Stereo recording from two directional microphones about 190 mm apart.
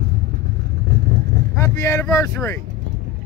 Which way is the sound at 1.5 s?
15° left (ahead or behind).